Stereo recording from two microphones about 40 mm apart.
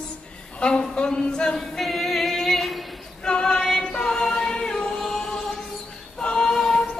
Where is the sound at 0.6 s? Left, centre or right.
Left.